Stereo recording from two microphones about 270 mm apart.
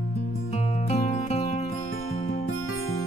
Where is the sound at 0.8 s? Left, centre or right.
Left.